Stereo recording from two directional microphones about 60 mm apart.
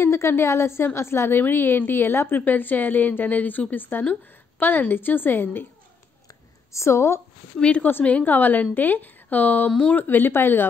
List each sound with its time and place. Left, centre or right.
0.0 s a woman's voice: left
6.2 s a sound: left
7.5 s speech: centre
8.0 s a woman's voice: left
9.7 s speech: centre
9.9 s a woman's voice: left